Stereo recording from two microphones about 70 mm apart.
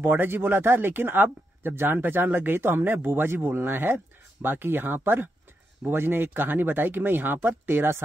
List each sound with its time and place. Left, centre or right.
0.0 s speech: right